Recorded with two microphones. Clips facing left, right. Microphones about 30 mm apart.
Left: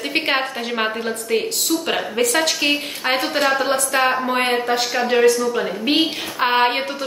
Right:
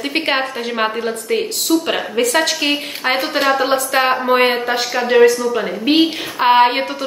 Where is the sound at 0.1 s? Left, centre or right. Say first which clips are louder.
Right 1 dB; centre.